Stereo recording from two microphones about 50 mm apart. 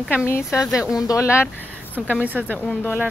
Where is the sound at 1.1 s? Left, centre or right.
Left.